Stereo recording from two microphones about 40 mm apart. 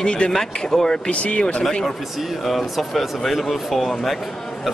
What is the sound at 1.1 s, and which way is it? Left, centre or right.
Speech, left.